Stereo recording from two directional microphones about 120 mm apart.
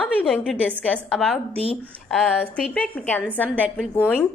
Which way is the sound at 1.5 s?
55° right (ahead or behind).